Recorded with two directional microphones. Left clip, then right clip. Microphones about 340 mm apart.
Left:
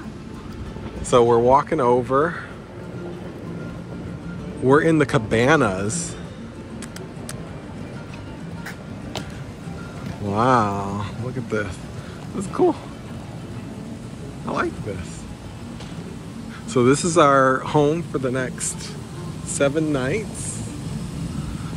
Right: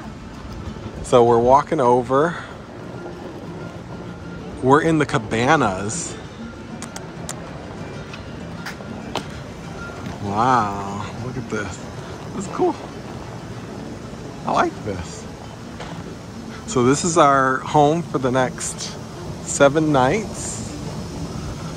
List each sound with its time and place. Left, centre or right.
1.1 s a man's voice: centre
4.6 s a man's voice: centre
10.3 s speech: centre
14.4 s speech: centre
16.7 s a man's voice: centre